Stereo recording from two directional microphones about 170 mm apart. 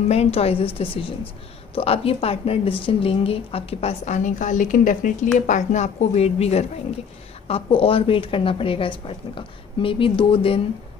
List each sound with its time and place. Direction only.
0.1 s a woman's voice: 35° left (ahead or behind)